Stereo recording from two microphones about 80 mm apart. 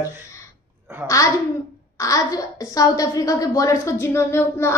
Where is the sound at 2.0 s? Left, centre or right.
Left.